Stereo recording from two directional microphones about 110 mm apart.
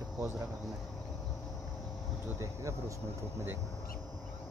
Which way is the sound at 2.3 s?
25° right (ahead or behind).